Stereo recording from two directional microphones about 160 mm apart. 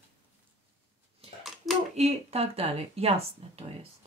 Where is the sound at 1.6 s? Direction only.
Centre (ahead or behind).